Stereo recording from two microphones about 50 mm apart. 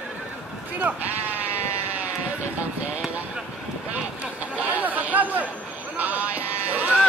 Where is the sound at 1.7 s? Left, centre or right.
Right.